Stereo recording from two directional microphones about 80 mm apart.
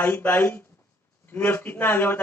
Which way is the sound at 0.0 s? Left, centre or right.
Left.